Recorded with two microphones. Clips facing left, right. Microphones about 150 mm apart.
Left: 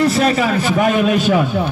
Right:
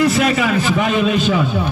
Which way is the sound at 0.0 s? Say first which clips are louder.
Left 1 dB; 35° left (ahead or behind).